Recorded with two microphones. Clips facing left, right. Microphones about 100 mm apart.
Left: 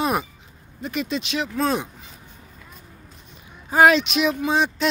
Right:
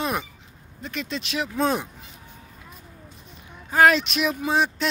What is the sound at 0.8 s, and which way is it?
Speech, 10° left (ahead or behind).